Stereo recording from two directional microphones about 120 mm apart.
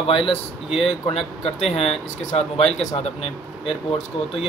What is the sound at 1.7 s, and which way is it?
Speech, 60° left (ahead or behind).